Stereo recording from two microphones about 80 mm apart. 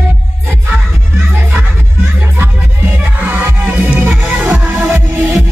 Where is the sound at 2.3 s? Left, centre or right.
Right.